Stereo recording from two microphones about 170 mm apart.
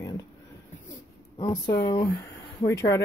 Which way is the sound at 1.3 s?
20° left (ahead or behind).